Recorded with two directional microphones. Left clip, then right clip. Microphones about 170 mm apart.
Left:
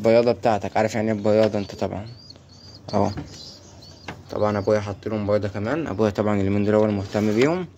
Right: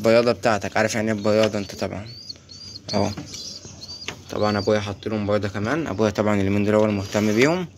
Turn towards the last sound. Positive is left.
turn(degrees=10)  # may be behind; listen again after turning